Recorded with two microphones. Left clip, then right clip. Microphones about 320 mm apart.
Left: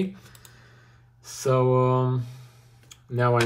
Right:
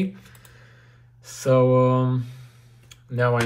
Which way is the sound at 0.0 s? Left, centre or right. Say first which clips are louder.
Right 1 dB; centre.